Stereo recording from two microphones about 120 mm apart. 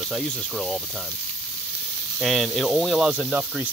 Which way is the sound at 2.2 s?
Centre (ahead or behind).